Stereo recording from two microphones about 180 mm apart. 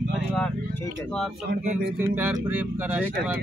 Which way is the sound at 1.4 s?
55° right (ahead or behind).